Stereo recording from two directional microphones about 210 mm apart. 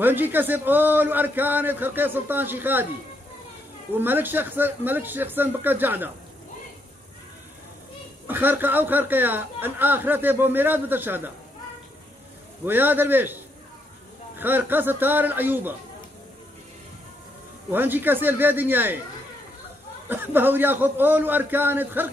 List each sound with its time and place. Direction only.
0.0 s a man's voice: 10° right (ahead or behind)
3.9 s a man's voice: 10° right (ahead or behind)
8.3 s a man's voice: 10° right (ahead or behind)
12.6 s a man's voice: 10° right (ahead or behind)
14.4 s a man's voice: 10° right (ahead or behind)
17.6 s a man's voice: 10° right (ahead or behind)
20.1 s a man's voice: 10° right (ahead or behind)